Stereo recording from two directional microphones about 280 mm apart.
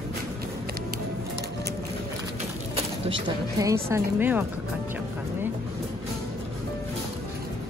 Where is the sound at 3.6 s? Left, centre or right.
Centre.